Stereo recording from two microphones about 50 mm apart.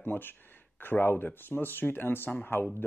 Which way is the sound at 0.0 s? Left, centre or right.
Left.